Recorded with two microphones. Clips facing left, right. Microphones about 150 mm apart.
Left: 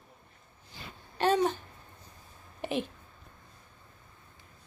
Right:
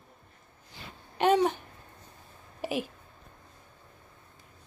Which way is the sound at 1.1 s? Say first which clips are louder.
Right 2 dB; 15° right (ahead or behind).